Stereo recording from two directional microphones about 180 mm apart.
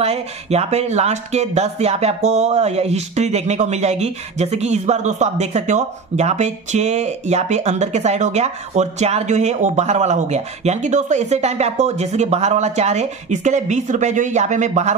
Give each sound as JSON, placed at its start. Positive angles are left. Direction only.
{"t": 0.0, "sound": "speech", "side_deg": -35}